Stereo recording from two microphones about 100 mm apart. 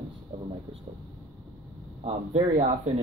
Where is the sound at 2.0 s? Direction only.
90° right.